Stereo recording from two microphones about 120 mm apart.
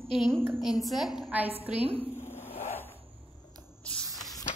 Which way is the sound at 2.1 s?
20° left (ahead or behind).